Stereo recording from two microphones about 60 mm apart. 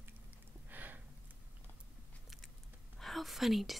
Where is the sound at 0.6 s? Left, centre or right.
Right.